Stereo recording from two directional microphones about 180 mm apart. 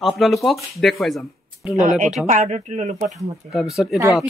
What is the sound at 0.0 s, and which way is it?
Speech, centre (ahead or behind).